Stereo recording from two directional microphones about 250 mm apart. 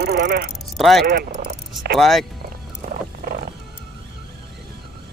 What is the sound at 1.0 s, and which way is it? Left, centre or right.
Speech, right.